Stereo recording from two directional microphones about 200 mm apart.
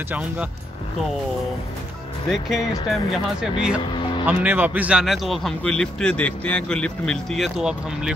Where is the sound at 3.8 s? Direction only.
25° left (ahead or behind).